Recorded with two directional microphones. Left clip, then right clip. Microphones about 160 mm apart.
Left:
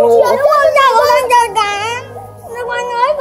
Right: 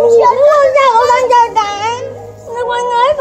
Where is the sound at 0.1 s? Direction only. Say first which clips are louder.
Right 2 dB; 45° left (ahead or behind).